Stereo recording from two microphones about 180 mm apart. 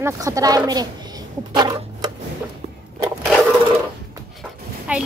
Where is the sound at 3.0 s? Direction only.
20° right (ahead or behind).